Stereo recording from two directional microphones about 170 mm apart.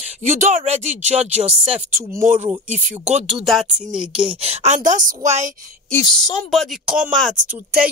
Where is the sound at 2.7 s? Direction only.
45° right (ahead or behind).